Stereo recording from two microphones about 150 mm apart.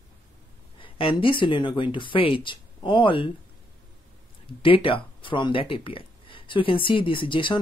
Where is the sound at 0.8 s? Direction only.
35° left (ahead or behind).